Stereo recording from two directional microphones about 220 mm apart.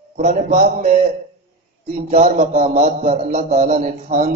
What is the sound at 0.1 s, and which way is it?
Speech, 35° right (ahead or behind).